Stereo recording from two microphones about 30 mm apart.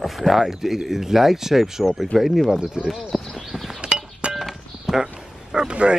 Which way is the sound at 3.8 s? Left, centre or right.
Right.